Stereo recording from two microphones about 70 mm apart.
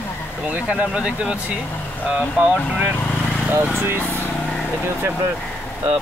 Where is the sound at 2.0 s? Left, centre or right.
Right.